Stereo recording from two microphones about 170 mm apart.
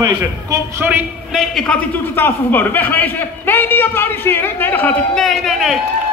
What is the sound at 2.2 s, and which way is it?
A man's voice, 10° left (ahead or behind).